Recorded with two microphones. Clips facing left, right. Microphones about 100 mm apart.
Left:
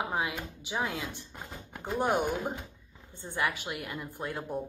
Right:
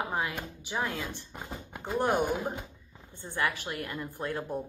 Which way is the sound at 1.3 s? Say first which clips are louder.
Right 3 dB; 10° right (ahead or behind).